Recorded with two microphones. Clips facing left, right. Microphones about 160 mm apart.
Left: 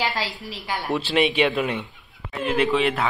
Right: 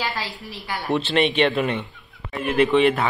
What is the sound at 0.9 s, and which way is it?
Speech, 5° left (ahead or behind).